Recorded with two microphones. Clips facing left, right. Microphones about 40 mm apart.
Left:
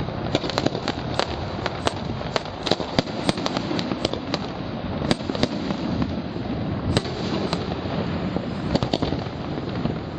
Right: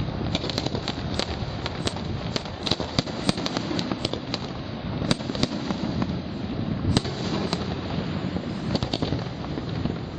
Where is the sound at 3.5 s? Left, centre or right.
Centre.